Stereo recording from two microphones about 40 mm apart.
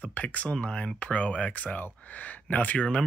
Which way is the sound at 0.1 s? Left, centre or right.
Left.